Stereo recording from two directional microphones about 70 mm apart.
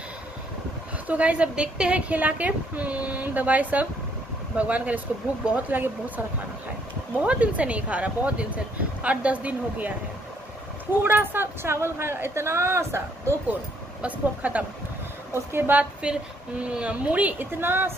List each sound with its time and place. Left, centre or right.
1.0 s a woman's voice: centre
11.0 s speech: right
14.0 s a woman's voice: right
15.3 s speech: right
15.8 s a woman's voice: centre
17.6 s speech: right